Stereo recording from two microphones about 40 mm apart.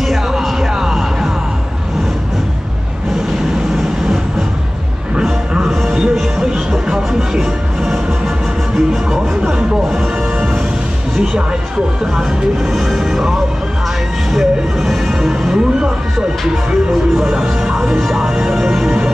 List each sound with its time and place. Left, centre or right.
0.4 s music: centre
5.9 s music: centre
8.7 s music: centre
12.7 s music: centre
16.9 s music: centre
18.9 s music: right